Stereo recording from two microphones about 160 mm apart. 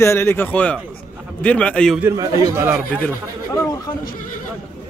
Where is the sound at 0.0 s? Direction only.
15° left (ahead or behind).